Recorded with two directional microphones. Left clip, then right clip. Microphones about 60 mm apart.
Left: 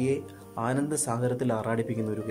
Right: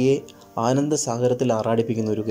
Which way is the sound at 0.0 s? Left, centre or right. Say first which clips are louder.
Right 8 dB; right.